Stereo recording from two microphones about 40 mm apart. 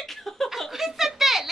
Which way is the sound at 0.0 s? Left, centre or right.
Centre.